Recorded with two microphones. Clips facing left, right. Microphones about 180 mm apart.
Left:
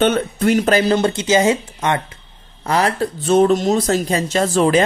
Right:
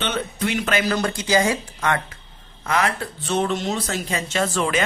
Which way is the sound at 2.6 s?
35° left (ahead or behind).